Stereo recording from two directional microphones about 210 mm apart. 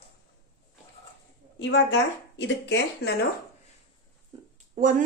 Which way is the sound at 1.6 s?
55° left (ahead or behind).